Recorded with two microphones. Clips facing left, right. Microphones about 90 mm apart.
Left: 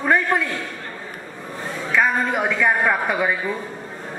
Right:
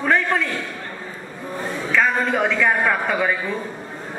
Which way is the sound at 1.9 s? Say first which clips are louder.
Even; 15° left (ahead or behind).